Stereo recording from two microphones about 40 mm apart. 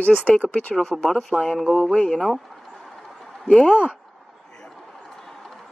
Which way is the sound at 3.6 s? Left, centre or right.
Right.